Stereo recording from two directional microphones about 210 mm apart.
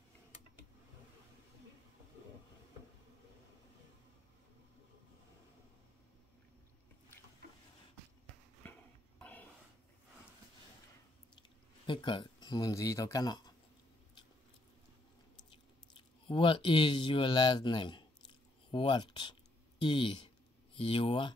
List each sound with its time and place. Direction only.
8.6 s a sound: 10° left (ahead or behind)
11.3 s speech: 20° left (ahead or behind)
16.3 s speech: 25° left (ahead or behind)